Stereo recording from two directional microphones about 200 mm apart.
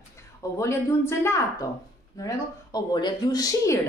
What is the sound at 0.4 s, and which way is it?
A woman's voice, 15° left (ahead or behind).